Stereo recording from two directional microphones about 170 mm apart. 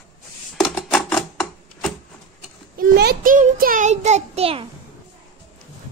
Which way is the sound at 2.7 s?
65° right (ahead or behind).